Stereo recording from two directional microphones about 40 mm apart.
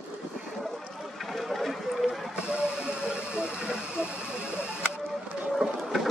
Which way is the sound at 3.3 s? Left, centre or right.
Right.